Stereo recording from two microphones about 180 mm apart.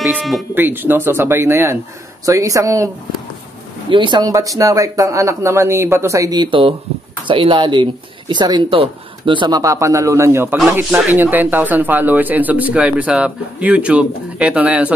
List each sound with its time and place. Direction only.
0.0 s speech: centre (ahead or behind)
0.6 s speech: 10° right (ahead or behind)
3.9 s speech: 25° right (ahead or behind); by 14.9 s 5° right (ahead or behind)